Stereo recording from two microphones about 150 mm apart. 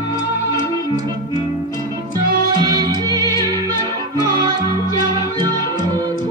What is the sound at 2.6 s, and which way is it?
Music, 25° right (ahead or behind).